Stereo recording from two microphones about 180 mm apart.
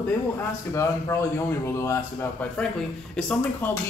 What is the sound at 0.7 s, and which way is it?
A man's voice, 15° left (ahead or behind).